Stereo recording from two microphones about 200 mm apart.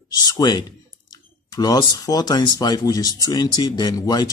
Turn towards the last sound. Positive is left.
turn(degrees=20)  # may be behind; listen again after turning